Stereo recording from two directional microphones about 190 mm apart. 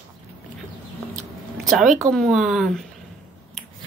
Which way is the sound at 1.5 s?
Centre (ahead or behind).